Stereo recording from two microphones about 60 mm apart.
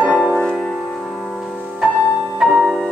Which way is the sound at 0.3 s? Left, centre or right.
Centre.